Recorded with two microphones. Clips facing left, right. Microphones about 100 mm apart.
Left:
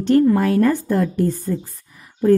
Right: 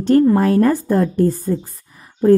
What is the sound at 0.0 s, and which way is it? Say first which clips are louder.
A woman's voice: right 2 dB; 35° right (ahead or behind).